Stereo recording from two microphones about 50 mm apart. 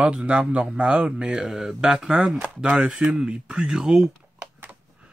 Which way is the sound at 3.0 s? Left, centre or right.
Centre.